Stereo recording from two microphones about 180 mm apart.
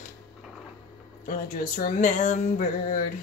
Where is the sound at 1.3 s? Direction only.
50° left (ahead or behind).